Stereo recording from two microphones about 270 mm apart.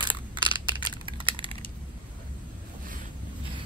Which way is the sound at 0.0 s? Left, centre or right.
Centre.